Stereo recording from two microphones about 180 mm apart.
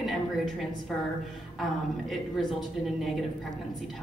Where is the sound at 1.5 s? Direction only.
Centre (ahead or behind).